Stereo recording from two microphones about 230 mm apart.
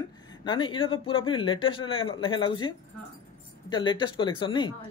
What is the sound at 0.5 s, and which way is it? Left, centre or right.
Speech, left.